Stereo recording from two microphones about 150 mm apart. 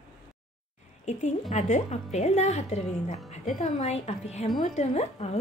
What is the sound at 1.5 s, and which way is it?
A woman's voice, 50° left (ahead or behind).